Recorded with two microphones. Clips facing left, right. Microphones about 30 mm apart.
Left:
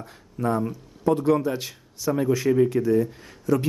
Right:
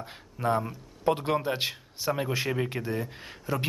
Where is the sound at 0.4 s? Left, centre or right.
Centre.